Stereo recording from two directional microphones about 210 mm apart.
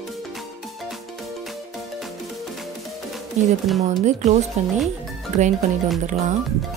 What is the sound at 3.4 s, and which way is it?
Speech, 35° right (ahead or behind).